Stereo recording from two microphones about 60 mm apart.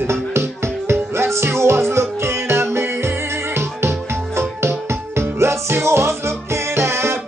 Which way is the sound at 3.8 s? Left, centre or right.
Right.